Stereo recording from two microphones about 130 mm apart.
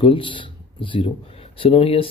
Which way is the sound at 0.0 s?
40° left (ahead or behind).